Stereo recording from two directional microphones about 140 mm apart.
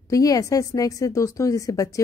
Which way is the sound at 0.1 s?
25° left (ahead or behind).